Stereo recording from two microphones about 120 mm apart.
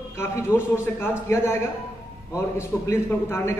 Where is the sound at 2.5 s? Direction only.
20° left (ahead or behind).